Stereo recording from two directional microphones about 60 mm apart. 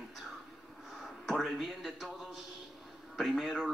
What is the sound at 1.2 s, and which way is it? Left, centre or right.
Speech, centre.